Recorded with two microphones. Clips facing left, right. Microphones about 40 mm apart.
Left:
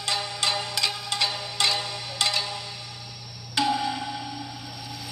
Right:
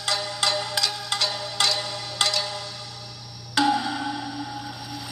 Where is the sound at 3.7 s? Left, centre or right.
Centre.